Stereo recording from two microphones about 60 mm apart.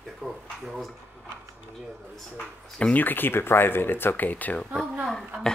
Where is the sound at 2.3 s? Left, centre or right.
Centre.